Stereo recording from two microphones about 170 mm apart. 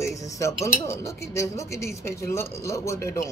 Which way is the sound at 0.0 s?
20° left (ahead or behind).